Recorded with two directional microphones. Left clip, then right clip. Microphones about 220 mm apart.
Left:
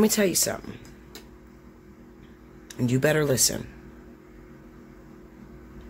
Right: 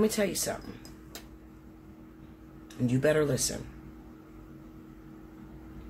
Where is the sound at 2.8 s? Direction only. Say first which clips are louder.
Left 3 dB; 50° left (ahead or behind).